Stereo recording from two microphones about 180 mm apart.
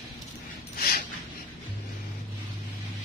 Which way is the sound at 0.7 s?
55° left (ahead or behind).